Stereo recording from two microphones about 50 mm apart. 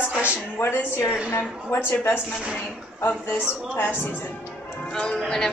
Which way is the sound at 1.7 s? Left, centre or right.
Left.